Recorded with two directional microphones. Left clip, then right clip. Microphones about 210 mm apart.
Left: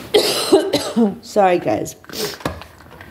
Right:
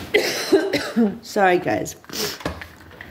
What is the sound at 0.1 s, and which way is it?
Cough, 65° left (ahead or behind).